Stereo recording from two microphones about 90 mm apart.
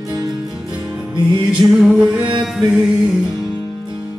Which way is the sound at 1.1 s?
60° right (ahead or behind).